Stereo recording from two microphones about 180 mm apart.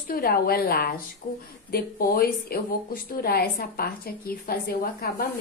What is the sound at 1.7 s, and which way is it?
A woman's voice, 55° left (ahead or behind).